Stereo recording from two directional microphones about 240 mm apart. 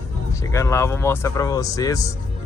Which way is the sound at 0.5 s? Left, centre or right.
Centre.